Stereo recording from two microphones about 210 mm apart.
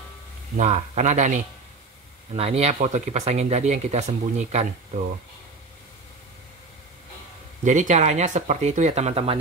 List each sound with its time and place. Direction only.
0.6 s speech: 30° right (ahead or behind)
7.6 s speech: 35° right (ahead or behind)